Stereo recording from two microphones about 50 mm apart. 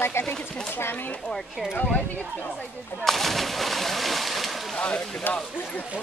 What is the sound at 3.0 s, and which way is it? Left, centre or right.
Speech, centre.